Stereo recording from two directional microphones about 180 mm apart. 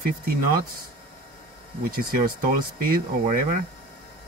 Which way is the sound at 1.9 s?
55° right (ahead or behind).